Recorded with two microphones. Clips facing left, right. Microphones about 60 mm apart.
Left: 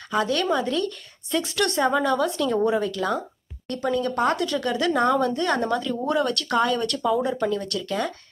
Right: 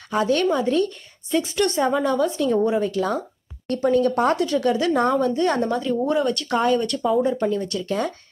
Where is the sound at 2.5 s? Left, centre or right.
Centre.